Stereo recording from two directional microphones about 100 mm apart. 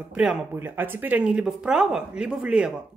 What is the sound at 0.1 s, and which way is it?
Speech, 10° right (ahead or behind).